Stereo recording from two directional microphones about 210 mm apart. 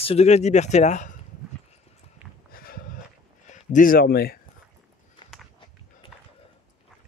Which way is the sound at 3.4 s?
35° left (ahead or behind).